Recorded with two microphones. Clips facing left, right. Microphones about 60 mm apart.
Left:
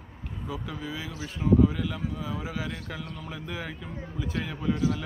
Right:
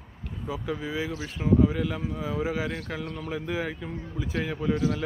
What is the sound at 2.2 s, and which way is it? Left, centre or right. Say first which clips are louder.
Speech: right 5 dB; centre.